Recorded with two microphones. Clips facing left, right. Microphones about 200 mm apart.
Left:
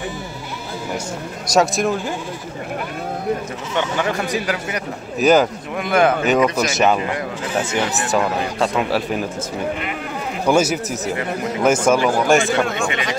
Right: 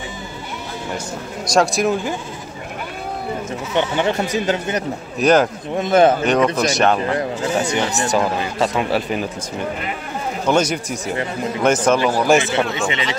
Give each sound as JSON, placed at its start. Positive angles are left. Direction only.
{"t": 1.5, "sound": "speech", "side_deg": 0}
{"t": 3.7, "sound": "speech", "side_deg": -25}
{"t": 5.2, "sound": "speech", "side_deg": 0}
{"t": 5.8, "sound": "speech", "side_deg": -30}
{"t": 6.2, "sound": "speech", "side_deg": 5}
{"t": 10.4, "sound": "speech", "side_deg": 5}
{"t": 12.4, "sound": "speech", "side_deg": -20}